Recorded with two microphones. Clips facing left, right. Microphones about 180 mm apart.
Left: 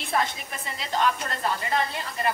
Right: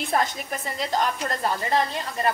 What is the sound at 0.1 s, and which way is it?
A woman's voice, 40° right (ahead or behind).